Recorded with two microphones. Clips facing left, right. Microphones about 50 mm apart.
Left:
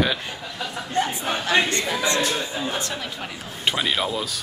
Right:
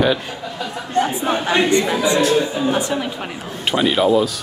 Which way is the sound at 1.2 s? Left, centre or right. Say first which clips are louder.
Right 4 dB; right.